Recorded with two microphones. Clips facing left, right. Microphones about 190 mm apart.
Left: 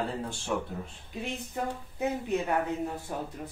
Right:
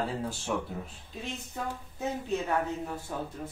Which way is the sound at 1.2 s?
15° left (ahead or behind).